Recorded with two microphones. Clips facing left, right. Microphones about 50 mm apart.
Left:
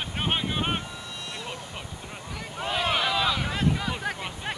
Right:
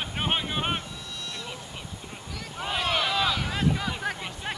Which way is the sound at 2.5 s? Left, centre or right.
Centre.